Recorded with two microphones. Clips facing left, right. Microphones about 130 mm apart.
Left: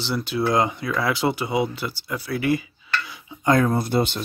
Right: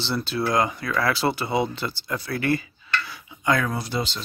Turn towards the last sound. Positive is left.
turn(degrees=55)  # may be behind; listen again after turning